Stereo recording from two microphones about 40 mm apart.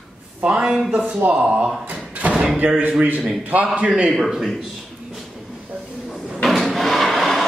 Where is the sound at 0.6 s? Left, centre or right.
Centre.